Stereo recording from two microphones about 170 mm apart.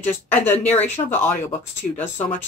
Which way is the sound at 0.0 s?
10° left (ahead or behind).